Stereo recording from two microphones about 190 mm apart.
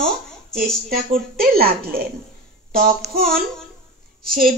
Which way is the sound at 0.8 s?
50° right (ahead or behind).